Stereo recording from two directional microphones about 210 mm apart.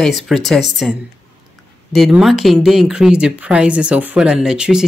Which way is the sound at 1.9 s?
Centre (ahead or behind).